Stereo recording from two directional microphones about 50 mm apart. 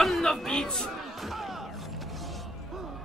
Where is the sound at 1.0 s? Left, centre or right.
Centre.